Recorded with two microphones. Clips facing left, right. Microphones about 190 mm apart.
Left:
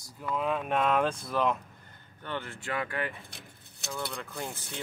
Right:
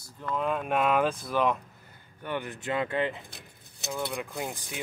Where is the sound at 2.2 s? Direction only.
15° right (ahead or behind).